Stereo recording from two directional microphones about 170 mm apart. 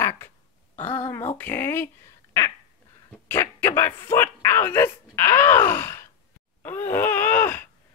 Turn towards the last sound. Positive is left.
turn(degrees=10)  # may be behind; listen again after turning